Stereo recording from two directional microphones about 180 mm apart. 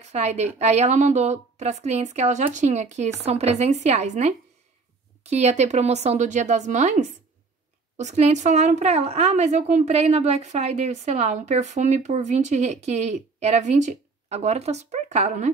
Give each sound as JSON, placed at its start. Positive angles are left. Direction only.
{"t": 0.1, "sound": "speech", "side_deg": -35}